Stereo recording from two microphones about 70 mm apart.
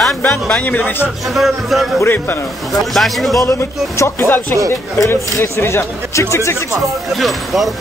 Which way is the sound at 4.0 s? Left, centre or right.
Left.